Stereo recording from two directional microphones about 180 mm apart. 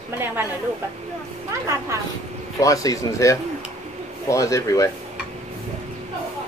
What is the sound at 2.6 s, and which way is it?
Speech, 20° left (ahead or behind).